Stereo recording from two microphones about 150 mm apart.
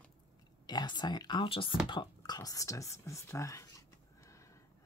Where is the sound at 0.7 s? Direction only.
30° left (ahead or behind).